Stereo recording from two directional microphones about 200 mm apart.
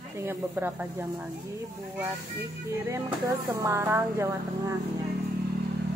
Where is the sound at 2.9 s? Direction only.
15° right (ahead or behind).